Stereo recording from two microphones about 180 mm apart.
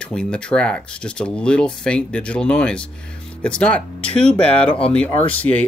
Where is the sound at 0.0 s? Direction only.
5° left (ahead or behind).